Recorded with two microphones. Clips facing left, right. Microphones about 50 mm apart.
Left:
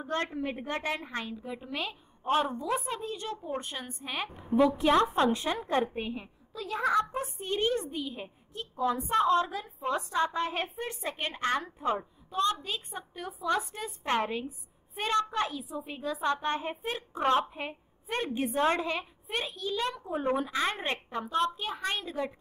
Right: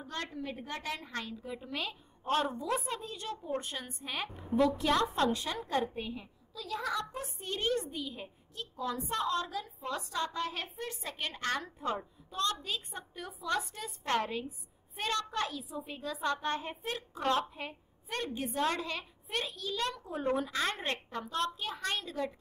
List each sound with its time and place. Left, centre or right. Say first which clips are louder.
0.0 s a woman's voice: left 7 dB; left; by 2.5 s centre
2.5 s a woman's voice: left 3 dB; centre
5.0 s a woman's voice: left 4 dB; left
17.1 s a woman's voice: left 5 dB; left